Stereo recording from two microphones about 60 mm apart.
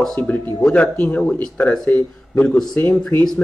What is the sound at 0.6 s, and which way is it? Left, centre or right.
Speech, centre.